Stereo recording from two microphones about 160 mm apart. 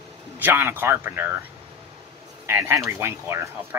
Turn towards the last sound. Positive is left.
turn(degrees=-15)  # may be behind; listen again after turning